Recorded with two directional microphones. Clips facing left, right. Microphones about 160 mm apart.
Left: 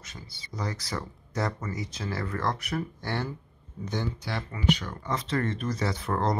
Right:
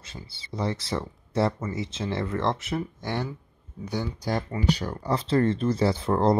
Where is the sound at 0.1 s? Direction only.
30° right (ahead or behind); by 4.1 s 10° right (ahead or behind).